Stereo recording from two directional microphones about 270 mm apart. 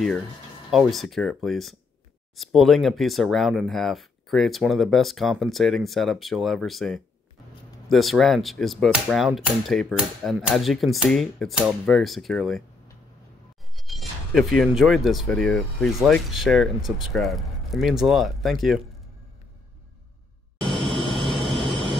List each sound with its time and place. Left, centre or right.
0.7 s speech: centre
13.7 s speech: centre
20.6 s vehicle: centre